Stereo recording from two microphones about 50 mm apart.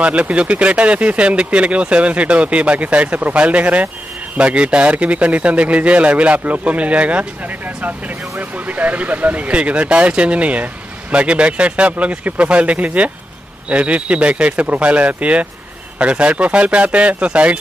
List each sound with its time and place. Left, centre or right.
0.0 s speech: right
8.4 s speech: right